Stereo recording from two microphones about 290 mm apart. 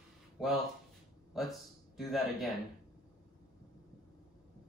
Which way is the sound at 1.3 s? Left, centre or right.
Centre.